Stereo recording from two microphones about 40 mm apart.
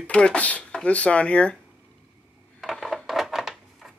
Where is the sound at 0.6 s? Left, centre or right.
Left.